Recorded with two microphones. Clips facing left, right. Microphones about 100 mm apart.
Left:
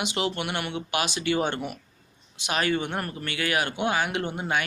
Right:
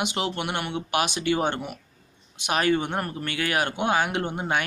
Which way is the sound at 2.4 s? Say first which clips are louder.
Right 3 dB; 45° right (ahead or behind).